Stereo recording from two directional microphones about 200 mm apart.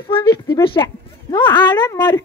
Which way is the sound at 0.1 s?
20° left (ahead or behind).